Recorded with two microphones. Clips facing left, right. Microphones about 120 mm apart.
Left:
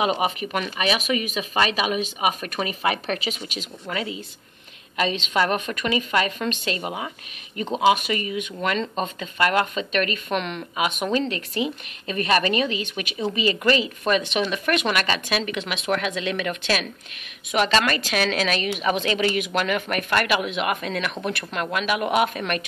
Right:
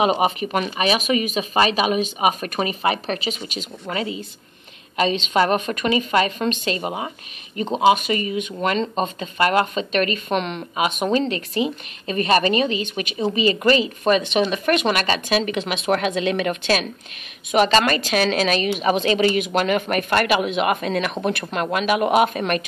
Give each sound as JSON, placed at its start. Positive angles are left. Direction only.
{"t": 0.0, "sound": "speech", "side_deg": -40}
{"t": 5.3, "sound": "speech", "side_deg": -30}